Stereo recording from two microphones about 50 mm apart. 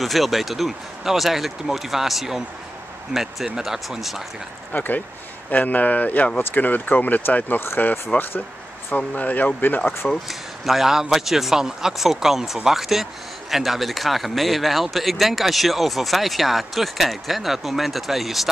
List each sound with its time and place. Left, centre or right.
0.0 s a man's voice: centre
4.7 s speech: left
8.1 s speech: left
10.2 s a man's voice: centre